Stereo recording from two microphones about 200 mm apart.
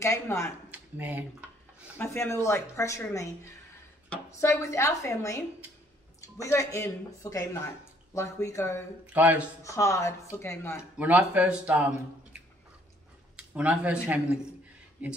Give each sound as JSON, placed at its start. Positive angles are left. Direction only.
{"t": 0.0, "sound": "speech", "side_deg": 15}
{"t": 0.7, "sound": "speech", "side_deg": -10}
{"t": 2.0, "sound": "speech", "side_deg": 10}
{"t": 4.4, "sound": "speech", "side_deg": 15}
{"t": 9.0, "sound": "speech", "side_deg": -10}
{"t": 9.6, "sound": "speech", "side_deg": 15}
{"t": 10.8, "sound": "speech", "side_deg": -5}
{"t": 13.4, "sound": "speech", "side_deg": -5}